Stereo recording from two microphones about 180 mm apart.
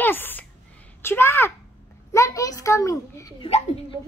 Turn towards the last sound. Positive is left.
turn(degrees=30)  # may be behind; listen again after turning